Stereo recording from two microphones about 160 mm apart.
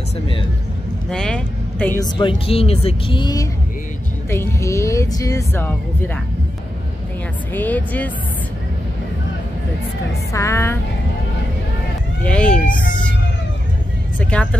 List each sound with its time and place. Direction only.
1.1 s speech: 5° left (ahead or behind)
2.0 s speech: 30° left (ahead or behind)
4.3 s speech: 15° left (ahead or behind)
7.5 s speech: 10° left (ahead or behind)
10.3 s speech: 15° left (ahead or behind)
12.2 s speech: 5° left (ahead or behind)
14.3 s speech: 5° left (ahead or behind)